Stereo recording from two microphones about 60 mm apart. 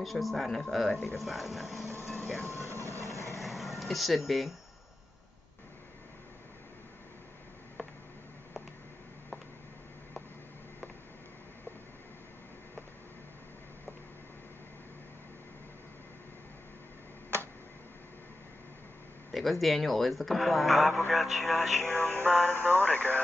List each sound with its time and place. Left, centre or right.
0.0 s speech: centre
2.1 s train: left
2.4 s vehicle: right
3.0 s vehicle: left
3.3 s a sound: centre
19.3 s speech: centre
21.8 s speech: left